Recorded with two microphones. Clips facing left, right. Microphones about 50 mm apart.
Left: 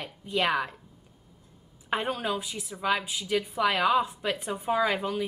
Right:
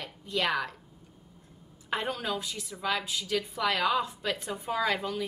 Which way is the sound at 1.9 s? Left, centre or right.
Centre.